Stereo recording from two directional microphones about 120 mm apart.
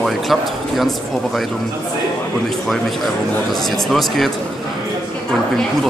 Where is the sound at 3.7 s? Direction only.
Centre (ahead or behind).